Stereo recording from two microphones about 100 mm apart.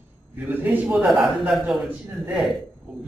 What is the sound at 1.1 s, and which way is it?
Speech, centre (ahead or behind).